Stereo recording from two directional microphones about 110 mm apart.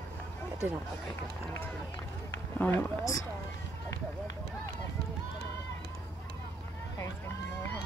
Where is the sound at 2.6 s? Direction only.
20° left (ahead or behind).